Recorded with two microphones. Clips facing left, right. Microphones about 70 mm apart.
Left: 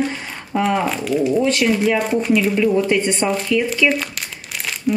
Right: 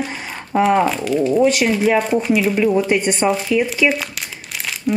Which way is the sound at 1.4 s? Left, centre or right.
Centre.